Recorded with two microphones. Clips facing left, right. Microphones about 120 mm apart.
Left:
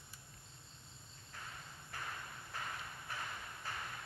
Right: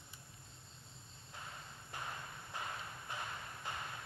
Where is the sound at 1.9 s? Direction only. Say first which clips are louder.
Right 1 dB; 20° right (ahead or behind).